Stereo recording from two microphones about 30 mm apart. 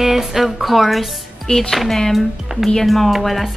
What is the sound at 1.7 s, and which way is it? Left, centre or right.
Speech, centre.